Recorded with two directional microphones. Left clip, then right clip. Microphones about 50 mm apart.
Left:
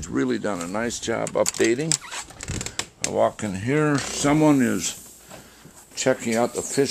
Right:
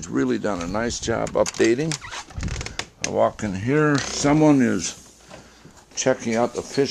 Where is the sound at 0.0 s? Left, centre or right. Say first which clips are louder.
Right 1 dB; right.